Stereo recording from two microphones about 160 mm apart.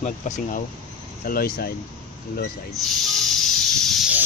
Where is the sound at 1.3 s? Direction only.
65° left (ahead or behind).